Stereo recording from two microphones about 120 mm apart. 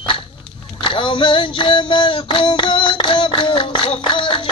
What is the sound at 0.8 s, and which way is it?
Female singing, 45° left (ahead or behind).